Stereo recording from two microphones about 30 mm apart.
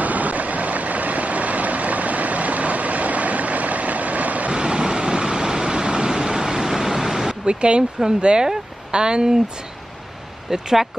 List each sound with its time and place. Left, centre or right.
0.0 s vehicle: right
4.5 s vehicle: right
7.4 s speech: right
10.5 s speech: centre